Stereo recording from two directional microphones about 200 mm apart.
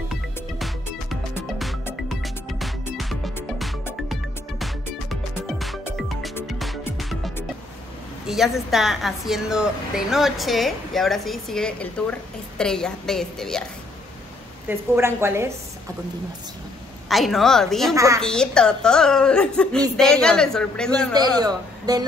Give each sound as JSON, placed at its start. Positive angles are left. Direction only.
{"t": 2.0, "sound": "music", "side_deg": 0}
{"t": 5.5, "sound": "music", "side_deg": 0}
{"t": 8.3, "sound": "a woman's voice", "side_deg": 0}
{"t": 14.7, "sound": "a woman's voice", "side_deg": -10}
{"t": 17.1, "sound": "a woman's voice", "side_deg": 0}
{"t": 17.9, "sound": "a woman's voice", "side_deg": -15}
{"t": 18.2, "sound": "a woman's voice", "side_deg": 5}
{"t": 21.1, "sound": "a man's voice", "side_deg": -20}